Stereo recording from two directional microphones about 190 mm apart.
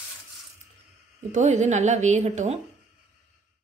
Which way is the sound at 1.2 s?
40° right (ahead or behind).